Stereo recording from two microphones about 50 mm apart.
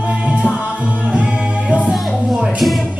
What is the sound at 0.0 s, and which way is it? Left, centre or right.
Music, right.